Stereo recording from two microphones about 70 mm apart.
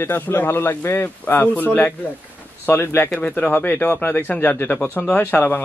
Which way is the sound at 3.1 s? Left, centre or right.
Centre.